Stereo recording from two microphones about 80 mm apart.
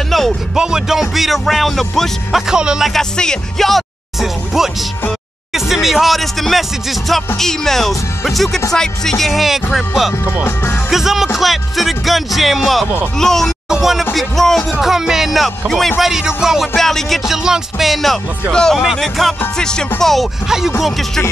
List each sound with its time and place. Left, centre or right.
0.6 s music: centre
2.9 s speech: centre
5.5 s music: centre
10.4 s speech: left
10.9 s music: centre
16.7 s music: centre